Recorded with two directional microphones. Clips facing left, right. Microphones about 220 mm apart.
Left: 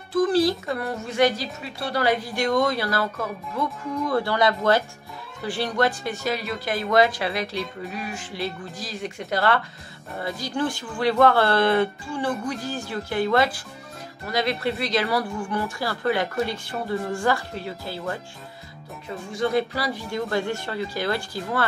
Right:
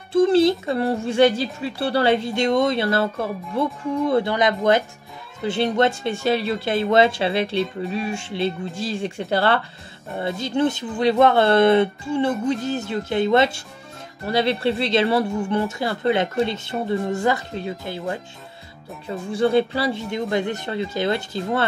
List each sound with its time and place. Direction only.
0.1 s speech: 25° right (ahead or behind)
19.0 s speech: 30° right (ahead or behind)